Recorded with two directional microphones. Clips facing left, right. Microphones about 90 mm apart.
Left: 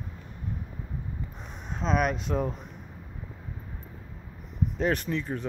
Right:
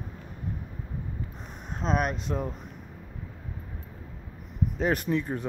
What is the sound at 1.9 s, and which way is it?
Speech, 40° right (ahead or behind).